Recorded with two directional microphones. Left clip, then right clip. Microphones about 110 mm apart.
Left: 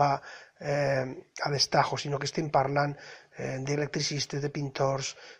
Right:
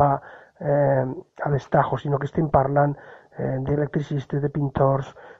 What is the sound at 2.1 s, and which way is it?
Speech, 15° right (ahead or behind).